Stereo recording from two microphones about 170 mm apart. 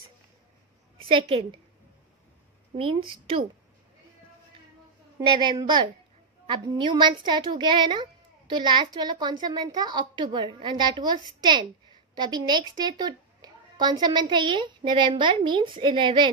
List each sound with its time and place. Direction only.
1.0 s a woman's voice: 35° right (ahead or behind)
2.7 s a woman's voice: 30° right (ahead or behind)
5.2 s a woman's voice: 25° right (ahead or behind)
12.2 s a woman's voice: 25° right (ahead or behind)